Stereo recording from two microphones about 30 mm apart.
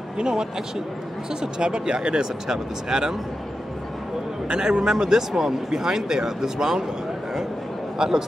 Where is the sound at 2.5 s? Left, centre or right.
Centre.